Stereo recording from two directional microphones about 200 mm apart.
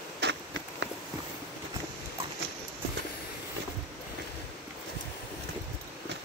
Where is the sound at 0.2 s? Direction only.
60° right (ahead or behind).